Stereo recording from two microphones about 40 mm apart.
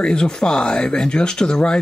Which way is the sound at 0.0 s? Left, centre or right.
Left.